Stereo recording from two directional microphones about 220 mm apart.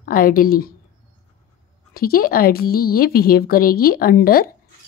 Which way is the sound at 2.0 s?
45° left (ahead or behind).